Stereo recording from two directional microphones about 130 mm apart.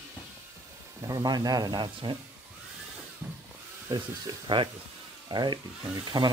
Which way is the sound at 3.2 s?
10° right (ahead or behind).